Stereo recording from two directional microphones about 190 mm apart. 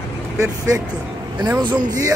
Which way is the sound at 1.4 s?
20° right (ahead or behind).